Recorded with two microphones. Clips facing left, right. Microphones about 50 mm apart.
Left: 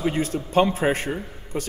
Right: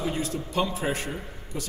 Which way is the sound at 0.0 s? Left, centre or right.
Left.